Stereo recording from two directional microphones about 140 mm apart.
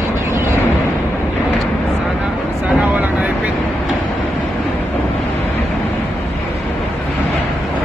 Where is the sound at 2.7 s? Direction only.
10° right (ahead or behind).